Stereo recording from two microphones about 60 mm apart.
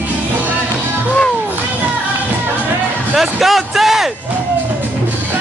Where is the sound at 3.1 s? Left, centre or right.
Centre.